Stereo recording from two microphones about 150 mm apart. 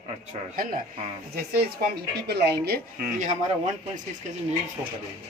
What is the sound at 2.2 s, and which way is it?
Speech, 90° right.